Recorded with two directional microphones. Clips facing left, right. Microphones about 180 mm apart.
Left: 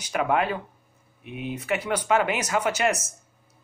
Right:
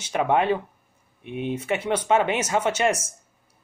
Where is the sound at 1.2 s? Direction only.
5° left (ahead or behind).